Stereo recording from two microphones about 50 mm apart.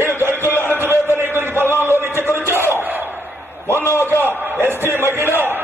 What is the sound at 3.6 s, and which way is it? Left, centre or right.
Speech, left.